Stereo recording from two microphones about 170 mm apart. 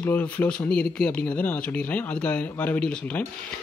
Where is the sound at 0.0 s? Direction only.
10° left (ahead or behind).